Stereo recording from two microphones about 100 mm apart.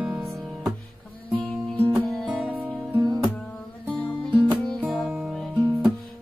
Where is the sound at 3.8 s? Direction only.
10° left (ahead or behind).